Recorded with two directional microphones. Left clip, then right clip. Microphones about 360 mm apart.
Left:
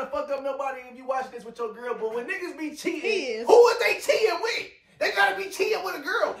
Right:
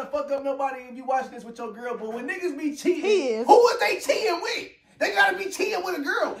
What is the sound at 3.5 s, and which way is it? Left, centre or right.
Speech, centre.